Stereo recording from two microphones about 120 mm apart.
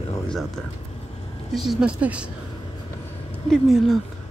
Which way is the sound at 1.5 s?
Centre (ahead or behind).